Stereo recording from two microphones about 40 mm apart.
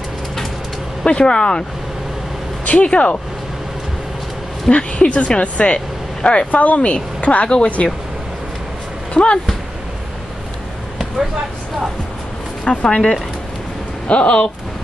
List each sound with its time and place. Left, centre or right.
1.0 s speech: left
2.8 s speech: left
4.6 s speech: left
9.1 s speech: left
12.8 s speech: centre
14.0 s speech: left